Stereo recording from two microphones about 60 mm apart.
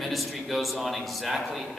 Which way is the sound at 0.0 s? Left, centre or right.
Centre.